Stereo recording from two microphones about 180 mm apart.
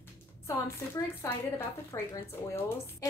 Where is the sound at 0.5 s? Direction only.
15° left (ahead or behind).